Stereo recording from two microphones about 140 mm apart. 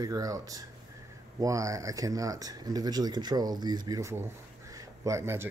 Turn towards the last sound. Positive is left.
turn(degrees=-20)  # may be behind; listen again after turning